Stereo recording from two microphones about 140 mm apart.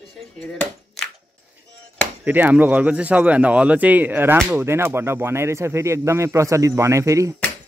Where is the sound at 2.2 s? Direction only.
10° right (ahead or behind).